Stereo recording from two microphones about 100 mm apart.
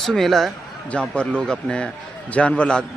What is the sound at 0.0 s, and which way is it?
A man's voice, 5° left (ahead or behind).